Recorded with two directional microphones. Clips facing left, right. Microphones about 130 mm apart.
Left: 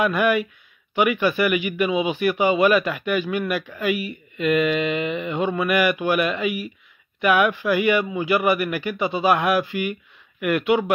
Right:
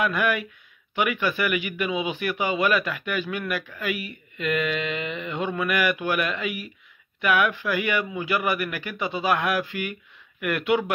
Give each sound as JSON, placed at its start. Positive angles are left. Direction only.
{"t": 0.0, "sound": "a man's voice", "side_deg": 20}